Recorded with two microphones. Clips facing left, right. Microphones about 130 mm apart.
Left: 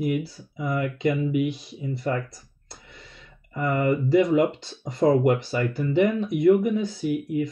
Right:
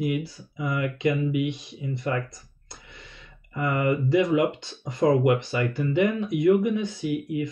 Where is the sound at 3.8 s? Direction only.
45° left (ahead or behind).